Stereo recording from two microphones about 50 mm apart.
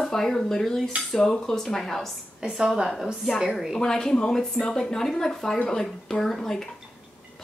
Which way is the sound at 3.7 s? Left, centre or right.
Centre.